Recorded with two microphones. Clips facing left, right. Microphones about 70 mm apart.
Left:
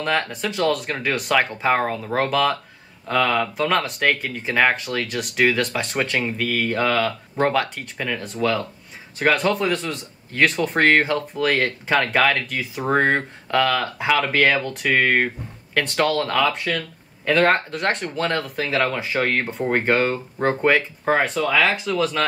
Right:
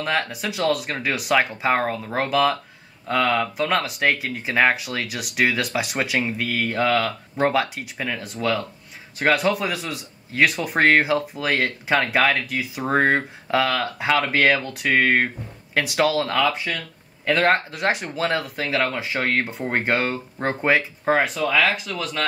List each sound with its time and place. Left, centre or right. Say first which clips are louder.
0.0 s speech: left 1 dB; centre
21.5 s speech: left 1 dB; centre